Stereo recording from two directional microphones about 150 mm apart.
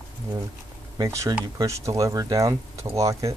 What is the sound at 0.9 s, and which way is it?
Speech, 20° right (ahead or behind).